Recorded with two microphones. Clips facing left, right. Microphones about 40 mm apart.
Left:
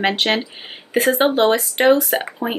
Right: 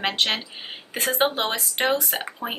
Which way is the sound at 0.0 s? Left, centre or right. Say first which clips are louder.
Left 6 dB; centre.